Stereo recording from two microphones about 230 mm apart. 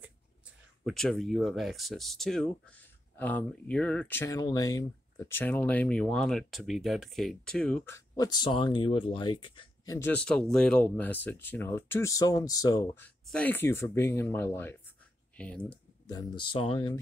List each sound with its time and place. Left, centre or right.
0.8 s speech: centre
16.1 s speech: centre